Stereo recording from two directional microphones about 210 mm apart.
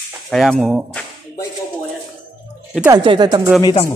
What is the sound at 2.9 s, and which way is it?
Speech, 20° right (ahead or behind).